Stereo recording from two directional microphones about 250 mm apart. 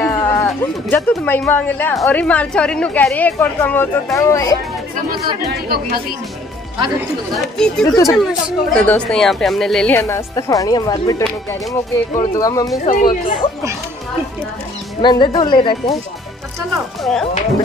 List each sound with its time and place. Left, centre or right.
0.0 s a sound: centre
0.5 s speech: centre
5.5 s speech: right
7.3 s speech: centre
8.2 s speech: centre
12.8 s speech: left
15.0 s speech: centre
17.0 s speech: centre